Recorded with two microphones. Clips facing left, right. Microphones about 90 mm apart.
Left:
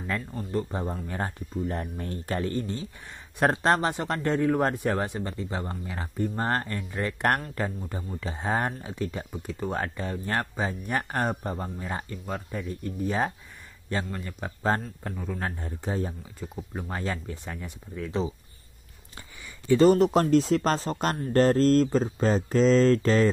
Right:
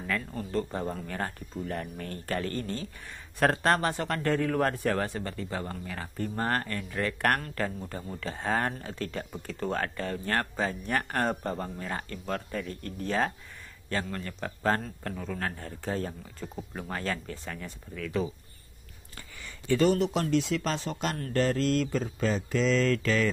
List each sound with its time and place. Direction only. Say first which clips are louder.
0.3 s a man's voice: left 1 dB; 10° left (ahead or behind)
19.8 s speech: left 6 dB; 40° left (ahead or behind)